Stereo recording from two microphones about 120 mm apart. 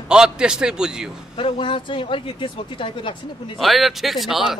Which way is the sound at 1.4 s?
45° left (ahead or behind).